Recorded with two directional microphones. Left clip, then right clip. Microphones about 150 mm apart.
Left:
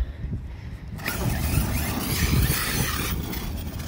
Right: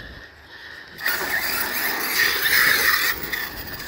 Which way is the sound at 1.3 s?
25° left (ahead or behind).